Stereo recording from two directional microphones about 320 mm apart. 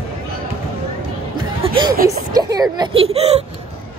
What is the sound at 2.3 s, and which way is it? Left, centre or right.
Speech, centre.